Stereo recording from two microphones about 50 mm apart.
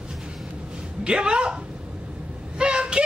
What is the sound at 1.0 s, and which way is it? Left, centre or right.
Speech, centre.